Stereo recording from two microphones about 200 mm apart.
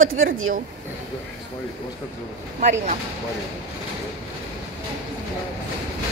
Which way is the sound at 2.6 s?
40° right (ahead or behind).